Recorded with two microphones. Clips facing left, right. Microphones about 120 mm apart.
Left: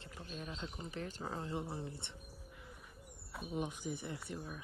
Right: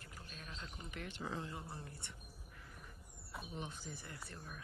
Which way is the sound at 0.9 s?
40° left (ahead or behind).